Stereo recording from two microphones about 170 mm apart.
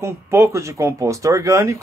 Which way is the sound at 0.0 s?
15° right (ahead or behind).